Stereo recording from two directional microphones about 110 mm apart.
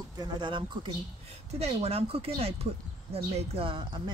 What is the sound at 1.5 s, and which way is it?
Speech, 70° right (ahead or behind).